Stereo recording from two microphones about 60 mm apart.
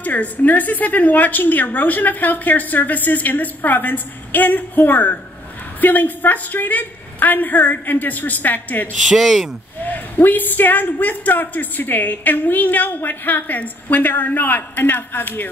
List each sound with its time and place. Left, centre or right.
0.0 s a woman's voice: left
9.0 s speech: centre
9.8 s a woman's voice: left